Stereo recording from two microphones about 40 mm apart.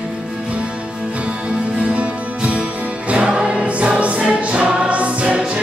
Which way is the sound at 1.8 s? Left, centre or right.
Right.